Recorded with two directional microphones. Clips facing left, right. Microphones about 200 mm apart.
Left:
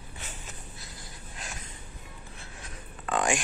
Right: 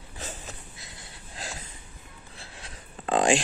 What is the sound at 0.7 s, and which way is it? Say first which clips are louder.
Snort: left 1 dB; 25° right (ahead or behind).